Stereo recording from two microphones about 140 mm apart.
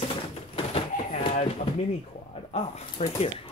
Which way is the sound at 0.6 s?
45° left (ahead or behind).